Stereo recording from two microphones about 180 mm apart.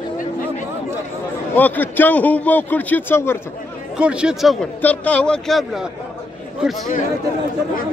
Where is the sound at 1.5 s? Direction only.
10° left (ahead or behind).